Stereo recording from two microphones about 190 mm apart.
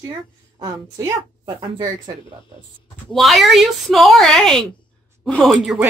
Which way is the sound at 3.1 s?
Centre (ahead or behind).